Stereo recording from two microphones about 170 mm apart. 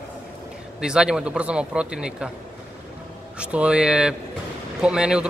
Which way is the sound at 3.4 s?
5° right (ahead or behind).